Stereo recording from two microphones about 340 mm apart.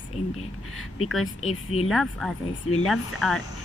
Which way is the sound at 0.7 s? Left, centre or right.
Left.